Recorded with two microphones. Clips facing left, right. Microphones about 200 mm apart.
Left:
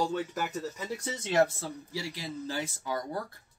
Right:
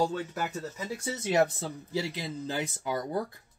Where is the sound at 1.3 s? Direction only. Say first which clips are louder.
Even; 20° right (ahead or behind).